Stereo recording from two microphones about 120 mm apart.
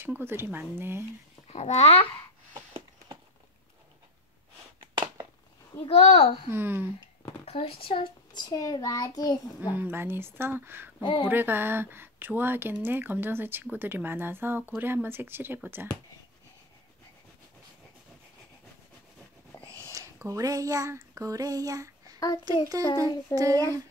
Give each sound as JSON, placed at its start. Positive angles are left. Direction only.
{"t": 0.0, "sound": "speech", "side_deg": -20}
{"t": 1.5, "sound": "a child's voice", "side_deg": 70}
{"t": 5.9, "sound": "a child's voice", "side_deg": 65}
{"t": 6.5, "sound": "speech", "side_deg": -20}
{"t": 7.5, "sound": "a child's voice", "side_deg": 50}
{"t": 9.6, "sound": "speech", "side_deg": -15}
{"t": 11.0, "sound": "speech", "side_deg": 40}
{"t": 11.2, "sound": "speech", "side_deg": -15}
{"t": 19.5, "sound": "a sound", "side_deg": 20}
{"t": 19.9, "sound": "a sound", "side_deg": -25}
{"t": 22.9, "sound": "speech", "side_deg": -30}